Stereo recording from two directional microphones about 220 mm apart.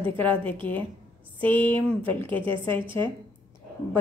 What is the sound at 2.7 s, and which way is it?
Speech, 20° right (ahead or behind).